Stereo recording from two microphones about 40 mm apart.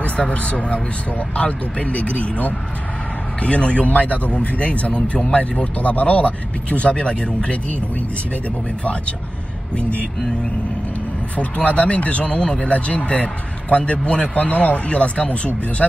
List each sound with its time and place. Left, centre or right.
0.0 s speech: left
9.8 s speech: left
11.3 s speech: left